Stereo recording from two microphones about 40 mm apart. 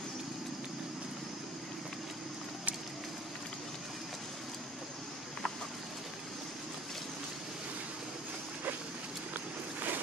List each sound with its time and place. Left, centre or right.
9.3 s boat: right